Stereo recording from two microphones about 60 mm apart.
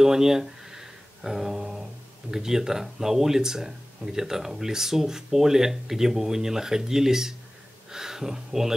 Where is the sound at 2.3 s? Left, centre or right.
Centre.